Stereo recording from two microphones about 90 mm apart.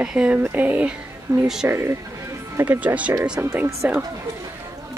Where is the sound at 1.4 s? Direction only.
5° right (ahead or behind).